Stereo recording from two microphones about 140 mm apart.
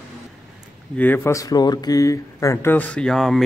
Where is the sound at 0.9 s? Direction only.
15° left (ahead or behind).